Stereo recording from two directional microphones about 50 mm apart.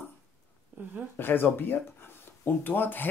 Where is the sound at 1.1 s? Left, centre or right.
Left.